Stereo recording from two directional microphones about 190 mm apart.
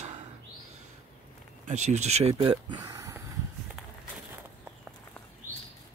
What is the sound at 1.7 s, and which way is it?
Speech, 35° right (ahead or behind).